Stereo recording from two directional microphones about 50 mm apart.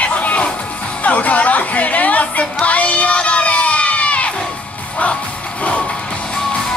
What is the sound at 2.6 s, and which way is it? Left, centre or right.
Crowd, left.